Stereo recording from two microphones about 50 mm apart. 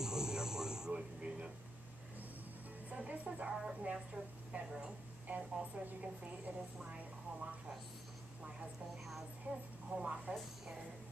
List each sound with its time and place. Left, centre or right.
0.0 s radio: centre
2.9 s music: right
3.8 s a woman's voice: right
6.9 s a sound: right
9.5 s a woman's voice: right
9.8 s a sound: right